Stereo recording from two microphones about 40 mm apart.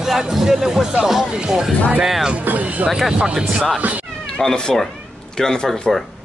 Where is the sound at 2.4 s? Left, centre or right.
Right.